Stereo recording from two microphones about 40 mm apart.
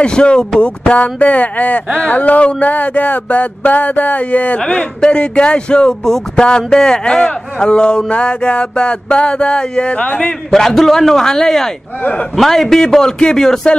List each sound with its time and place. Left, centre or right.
0.0 s speech: left
0.6 s a sound: left
4.6 s speech: left
6.0 s a man's voice: centre; by 10.1 s left
10.5 s a man's voice: centre